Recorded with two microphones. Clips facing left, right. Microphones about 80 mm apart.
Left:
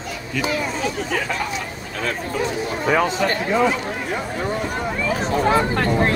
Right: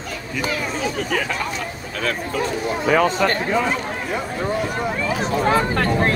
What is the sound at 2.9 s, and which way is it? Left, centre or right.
Speech, right.